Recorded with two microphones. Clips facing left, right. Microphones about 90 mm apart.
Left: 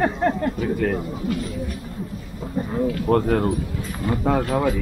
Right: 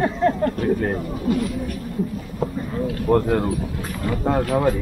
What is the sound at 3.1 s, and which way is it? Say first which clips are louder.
Speech: right 2 dB; centre (ahead or behind).